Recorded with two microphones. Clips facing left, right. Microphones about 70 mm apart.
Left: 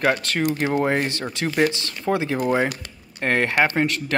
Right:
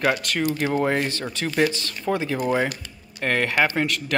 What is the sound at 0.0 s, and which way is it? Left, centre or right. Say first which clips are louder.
Speech: left 1 dB; left.